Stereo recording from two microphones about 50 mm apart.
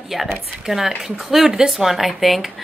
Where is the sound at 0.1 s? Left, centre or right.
Centre.